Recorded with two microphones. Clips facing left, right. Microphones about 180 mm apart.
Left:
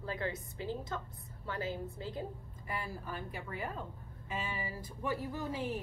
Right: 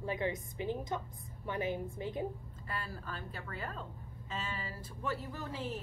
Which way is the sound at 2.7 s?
15° left (ahead or behind).